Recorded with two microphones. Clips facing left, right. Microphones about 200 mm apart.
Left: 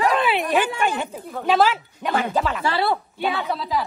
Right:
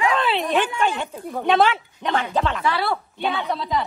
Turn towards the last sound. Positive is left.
turn(degrees=5)  # may be behind; listen again after turning